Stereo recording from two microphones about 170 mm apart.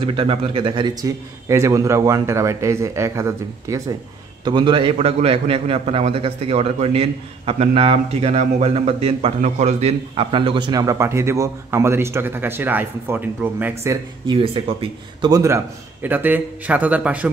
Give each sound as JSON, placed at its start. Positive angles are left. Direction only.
{"t": 0.0, "sound": "a man's voice", "side_deg": -30}
{"t": 14.2, "sound": "a man's voice", "side_deg": -30}